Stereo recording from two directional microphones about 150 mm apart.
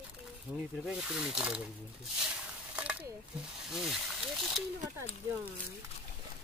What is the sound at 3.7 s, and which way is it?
Speech, centre (ahead or behind).